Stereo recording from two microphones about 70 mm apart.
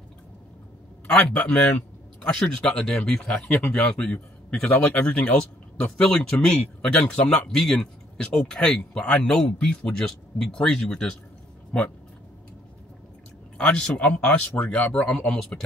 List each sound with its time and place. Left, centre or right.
1.0 s a man's voice: centre
13.6 s a man's voice: centre